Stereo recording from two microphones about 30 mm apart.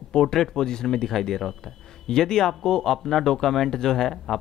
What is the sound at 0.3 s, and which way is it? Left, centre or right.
Speech, centre.